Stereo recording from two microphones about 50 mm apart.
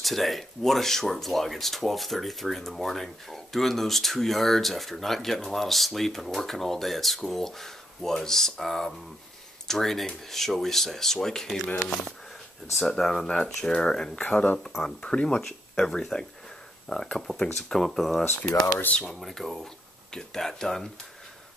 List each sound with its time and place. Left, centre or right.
0.0 s speech: centre
12.7 s speech: centre
15.7 s speech: centre